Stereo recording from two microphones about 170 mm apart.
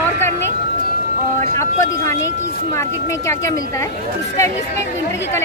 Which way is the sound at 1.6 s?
20° left (ahead or behind).